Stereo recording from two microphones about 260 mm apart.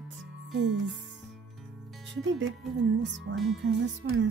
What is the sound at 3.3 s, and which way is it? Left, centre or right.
Speech, right.